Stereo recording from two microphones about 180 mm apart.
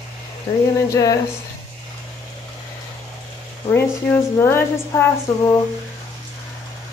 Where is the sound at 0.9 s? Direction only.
20° left (ahead or behind).